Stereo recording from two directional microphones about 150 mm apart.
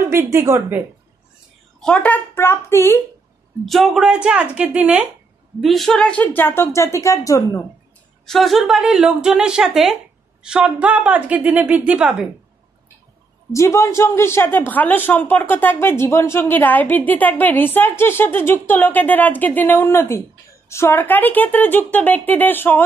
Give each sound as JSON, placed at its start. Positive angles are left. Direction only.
{"t": 0.0, "sound": "a woman's voice", "side_deg": -15}
{"t": 1.8, "sound": "a woman's voice", "side_deg": 5}
{"t": 3.6, "sound": "a woman's voice", "side_deg": 0}
{"t": 8.3, "sound": "a woman's voice", "side_deg": 0}
{"t": 13.5, "sound": "a woman's voice", "side_deg": 20}